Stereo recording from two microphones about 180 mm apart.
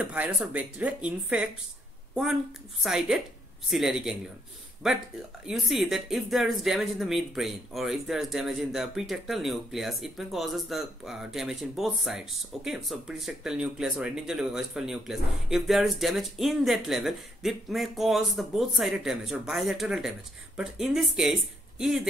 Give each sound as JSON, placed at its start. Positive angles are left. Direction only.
{"t": 0.0, "sound": "speech", "side_deg": -5}
{"t": 2.8, "sound": "speech", "side_deg": -5}